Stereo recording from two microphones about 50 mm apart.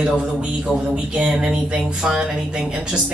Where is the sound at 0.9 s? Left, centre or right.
Centre.